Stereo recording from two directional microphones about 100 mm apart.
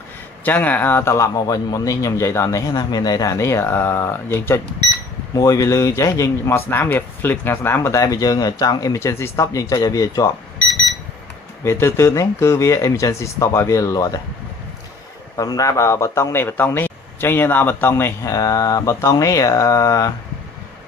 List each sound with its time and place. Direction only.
0.5 s speech: 15° left (ahead or behind)
1.1 s speech: 35° left (ahead or behind)
5.3 s speech: 35° left (ahead or behind)
9.0 s speech: 25° left (ahead or behind)
11.6 s speech: 25° left (ahead or behind)
15.3 s speech: 35° left (ahead or behind)
18.3 s speech: 35° left (ahead or behind)